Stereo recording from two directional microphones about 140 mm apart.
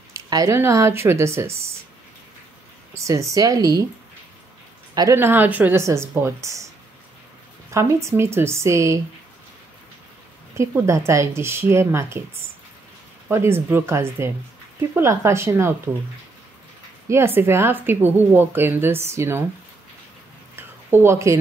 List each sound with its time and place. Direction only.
0.1 s a sound: 25° right (ahead or behind)
0.6 s speech: 20° right (ahead or behind)
2.9 s speech: 20° right (ahead or behind)
4.9 s a woman's voice: 20° right (ahead or behind)
7.7 s speech: 20° right (ahead or behind)
10.6 s speech: 20° right (ahead or behind)
13.3 s a woman's voice: 15° right (ahead or behind)
17.1 s a woman's voice: 15° right (ahead or behind)
20.5 s a sound: 15° right (ahead or behind)